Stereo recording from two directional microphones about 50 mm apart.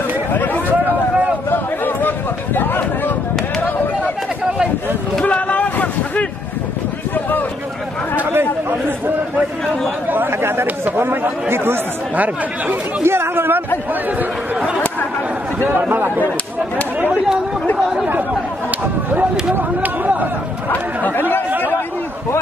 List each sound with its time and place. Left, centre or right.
0.3 s chatter: left
5.2 s vehicle: left
8.3 s chatter: right
10.0 s speech: right
13.0 s speech: right
15.7 s a man's voice: right
19.8 s chatter: right
20.7 s speech: left
21.5 s a sound: right